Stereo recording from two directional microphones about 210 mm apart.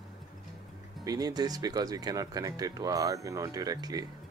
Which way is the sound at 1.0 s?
20° right (ahead or behind).